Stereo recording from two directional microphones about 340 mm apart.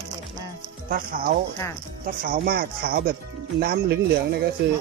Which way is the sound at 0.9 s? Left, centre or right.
Right.